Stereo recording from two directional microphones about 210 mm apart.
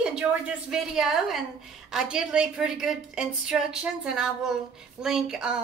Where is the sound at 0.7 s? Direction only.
Centre (ahead or behind).